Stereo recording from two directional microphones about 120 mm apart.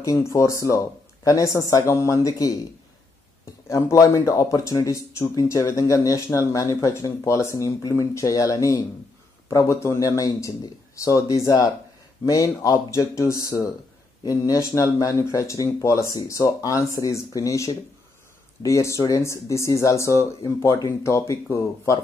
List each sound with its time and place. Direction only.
0.0 s speech: 25° left (ahead or behind)
3.6 s speech: 25° left (ahead or behind)